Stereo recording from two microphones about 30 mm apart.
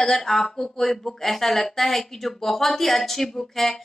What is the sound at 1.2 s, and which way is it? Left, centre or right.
Speech, centre.